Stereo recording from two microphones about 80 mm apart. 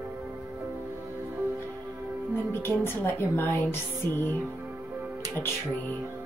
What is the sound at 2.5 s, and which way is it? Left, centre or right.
A woman's voice, left.